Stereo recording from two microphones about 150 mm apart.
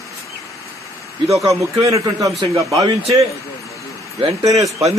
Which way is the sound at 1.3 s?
20° right (ahead or behind).